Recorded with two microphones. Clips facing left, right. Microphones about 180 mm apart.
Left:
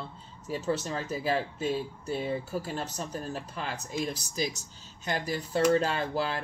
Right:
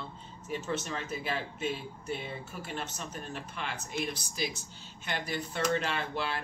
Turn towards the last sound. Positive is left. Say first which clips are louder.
# left 5 dB
turn(degrees=35)  # may be behind; listen again after turning